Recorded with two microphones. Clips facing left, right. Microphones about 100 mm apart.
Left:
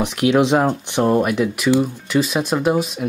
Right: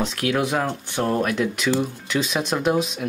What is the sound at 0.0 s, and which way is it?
Speech, 15° left (ahead or behind).